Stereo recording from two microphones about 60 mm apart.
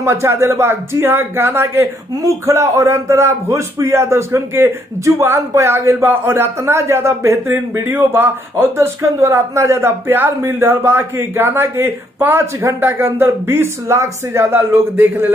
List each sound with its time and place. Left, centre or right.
0.0 s speech: right
2.2 s a man's voice: right
5.0 s speech: right
8.7 s speech: right